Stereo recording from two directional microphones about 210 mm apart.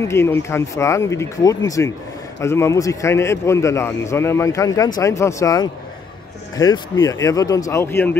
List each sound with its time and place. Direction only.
0.1 s a man's voice: 10° left (ahead or behind)